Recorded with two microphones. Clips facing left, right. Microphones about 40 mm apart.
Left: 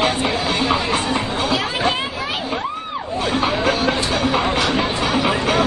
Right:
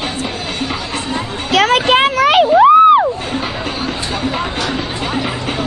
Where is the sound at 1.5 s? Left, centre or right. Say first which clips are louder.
Right 12 dB; right.